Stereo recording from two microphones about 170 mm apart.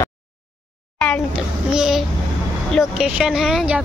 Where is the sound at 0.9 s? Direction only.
5° left (ahead or behind).